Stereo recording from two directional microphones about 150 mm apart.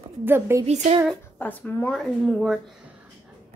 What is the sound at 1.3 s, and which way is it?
Speech, 10° left (ahead or behind).